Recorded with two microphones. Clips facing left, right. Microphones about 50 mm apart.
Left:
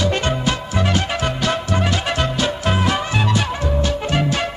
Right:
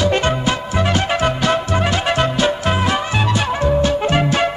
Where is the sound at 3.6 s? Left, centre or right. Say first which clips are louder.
Right 5 dB; right.